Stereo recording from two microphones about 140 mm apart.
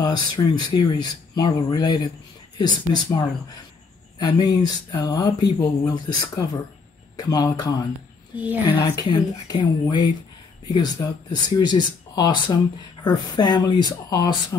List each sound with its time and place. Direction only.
0.0 s speech: 30° left (ahead or behind)